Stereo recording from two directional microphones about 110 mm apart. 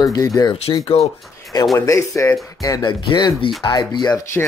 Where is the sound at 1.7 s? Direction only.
25° left (ahead or behind).